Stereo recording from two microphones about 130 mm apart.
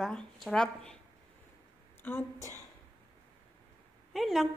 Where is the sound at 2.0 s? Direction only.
15° left (ahead or behind).